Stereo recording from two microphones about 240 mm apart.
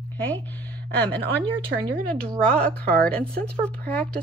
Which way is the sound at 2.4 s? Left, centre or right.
Centre.